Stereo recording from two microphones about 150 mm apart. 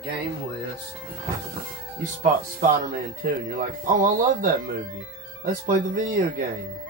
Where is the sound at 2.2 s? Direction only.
65° right (ahead or behind).